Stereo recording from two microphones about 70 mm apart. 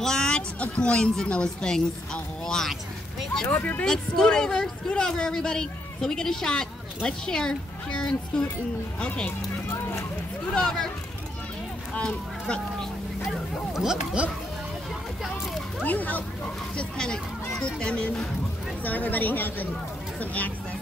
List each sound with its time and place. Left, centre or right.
0.0 s a woman's voice: centre
3.4 s speech: left
3.8 s speech: centre
10.5 s speech: centre
11.9 s speech: centre
13.3 s a sound: centre
15.8 s speech: left
16.7 s speech: centre
18.9 s speech: left